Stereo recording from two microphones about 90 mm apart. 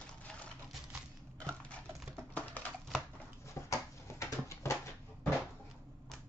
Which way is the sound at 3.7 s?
35° left (ahead or behind).